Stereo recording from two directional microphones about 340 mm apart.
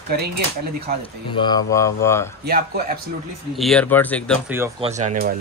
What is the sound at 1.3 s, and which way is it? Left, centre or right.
Speech, centre.